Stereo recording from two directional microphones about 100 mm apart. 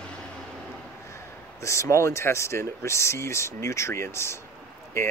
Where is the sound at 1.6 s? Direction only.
30° left (ahead or behind).